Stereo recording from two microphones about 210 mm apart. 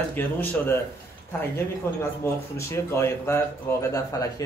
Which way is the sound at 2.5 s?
15° left (ahead or behind).